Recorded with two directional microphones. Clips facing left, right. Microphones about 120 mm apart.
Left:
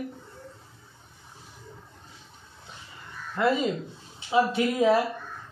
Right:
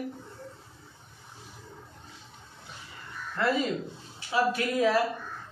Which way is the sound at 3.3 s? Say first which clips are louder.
Left 3 dB; 15° left (ahead or behind).